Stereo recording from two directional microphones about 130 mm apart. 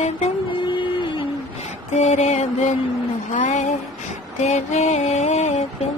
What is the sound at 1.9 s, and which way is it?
Mantra, 65° left (ahead or behind).